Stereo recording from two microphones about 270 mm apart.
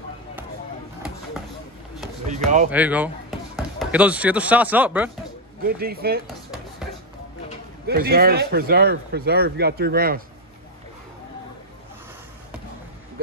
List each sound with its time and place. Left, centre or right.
2.2 s speech: right
2.7 s speech: centre
5.6 s speech: right
7.8 s speech: right